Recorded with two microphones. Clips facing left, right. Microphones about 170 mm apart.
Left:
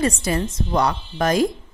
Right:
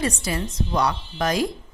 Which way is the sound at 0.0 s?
50° left (ahead or behind).